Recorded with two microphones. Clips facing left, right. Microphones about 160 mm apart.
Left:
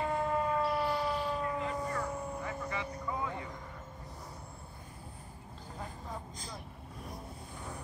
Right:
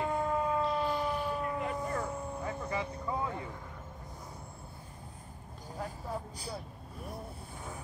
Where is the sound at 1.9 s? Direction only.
30° right (ahead or behind).